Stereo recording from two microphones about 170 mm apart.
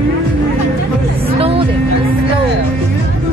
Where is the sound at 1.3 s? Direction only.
35° right (ahead or behind).